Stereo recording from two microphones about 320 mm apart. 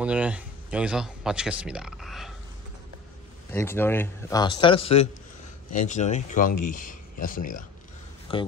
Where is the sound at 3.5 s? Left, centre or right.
Centre; by 7.6 s left.